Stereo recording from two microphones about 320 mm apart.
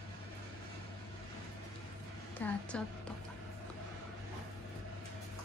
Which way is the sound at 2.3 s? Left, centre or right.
Centre.